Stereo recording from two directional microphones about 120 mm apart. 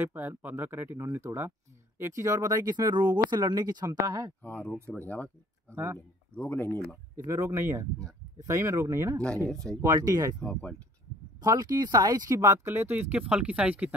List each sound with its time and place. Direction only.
0.0 s speech: 15° right (ahead or behind)
4.4 s speech: 10° left (ahead or behind)
7.2 s speech: 25° right (ahead or behind)
9.5 s speech: 5° left (ahead or behind)
9.8 s speech: 35° right (ahead or behind)
10.4 s speech: 10° left (ahead or behind)
11.4 s speech: 35° right (ahead or behind)
12.3 s speech: 25° right (ahead or behind)